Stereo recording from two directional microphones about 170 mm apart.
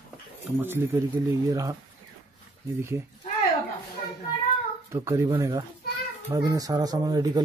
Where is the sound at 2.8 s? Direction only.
15° right (ahead or behind).